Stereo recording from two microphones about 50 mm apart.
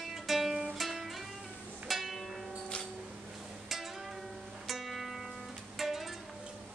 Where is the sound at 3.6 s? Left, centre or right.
Centre.